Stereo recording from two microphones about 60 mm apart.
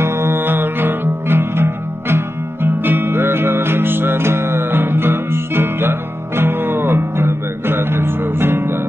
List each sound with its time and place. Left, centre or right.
0.0 s music: right